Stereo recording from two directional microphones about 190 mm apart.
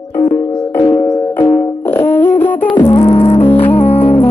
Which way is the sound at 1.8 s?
10° left (ahead or behind).